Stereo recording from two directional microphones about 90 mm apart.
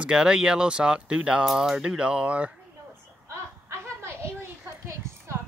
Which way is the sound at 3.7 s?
30° right (ahead or behind).